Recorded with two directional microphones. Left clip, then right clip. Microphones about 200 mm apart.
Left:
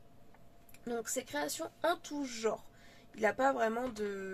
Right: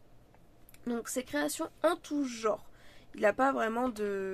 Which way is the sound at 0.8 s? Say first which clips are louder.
Right 2 dB; 25° right (ahead or behind).